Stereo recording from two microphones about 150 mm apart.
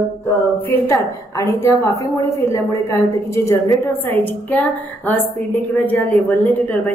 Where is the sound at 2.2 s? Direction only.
20° left (ahead or behind).